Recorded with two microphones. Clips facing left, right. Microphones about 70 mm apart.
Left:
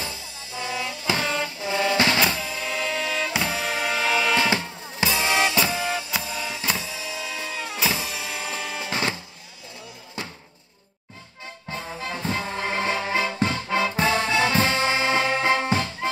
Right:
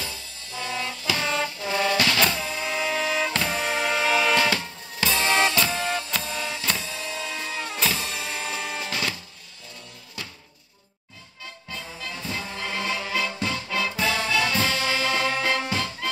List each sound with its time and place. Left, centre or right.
0.0 s music: centre
1.2 s vehicle: centre
1.6 s vehicle: centre
2.1 s music: centre
4.4 s music: centre
5.1 s drum kit: centre
5.5 s music: centre
8.9 s music: left
11.7 s music: left